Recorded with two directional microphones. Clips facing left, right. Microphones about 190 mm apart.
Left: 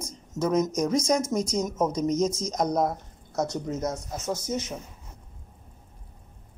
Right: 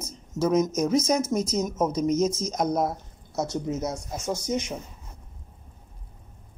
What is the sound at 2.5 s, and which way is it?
Speech, 5° right (ahead or behind).